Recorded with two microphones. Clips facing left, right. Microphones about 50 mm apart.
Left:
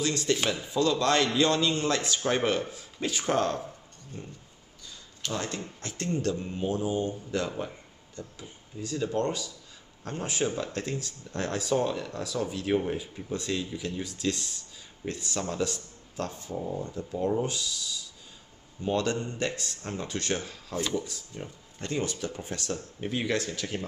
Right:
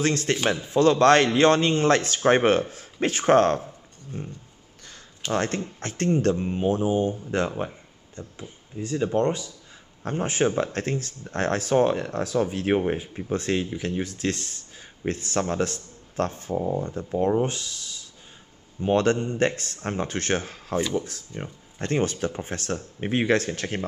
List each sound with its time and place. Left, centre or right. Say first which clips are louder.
0.0 s speech: right 4 dB; right